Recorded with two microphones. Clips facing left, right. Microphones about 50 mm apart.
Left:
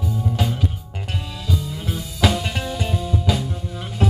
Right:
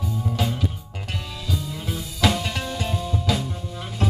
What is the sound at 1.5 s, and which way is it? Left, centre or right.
Music, centre.